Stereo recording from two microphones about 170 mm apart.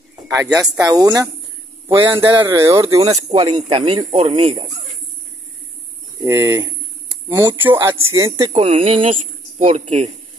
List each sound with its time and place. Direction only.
0.1 s speech: 20° right (ahead or behind)
2.1 s speech: 15° right (ahead or behind)
6.1 s speech: 15° right (ahead or behind)
7.5 s speech: 15° right (ahead or behind)
8.5 s speech: 35° right (ahead or behind)